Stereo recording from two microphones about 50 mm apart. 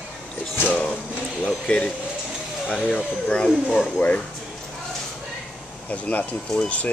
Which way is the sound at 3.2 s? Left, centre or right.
Centre.